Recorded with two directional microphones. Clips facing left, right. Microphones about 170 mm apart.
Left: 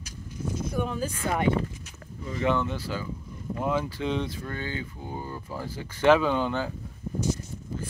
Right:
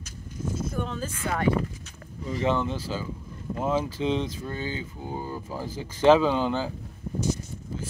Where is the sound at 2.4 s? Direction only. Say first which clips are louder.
Even; 30° right (ahead or behind); by 5.9 s 15° right (ahead or behind).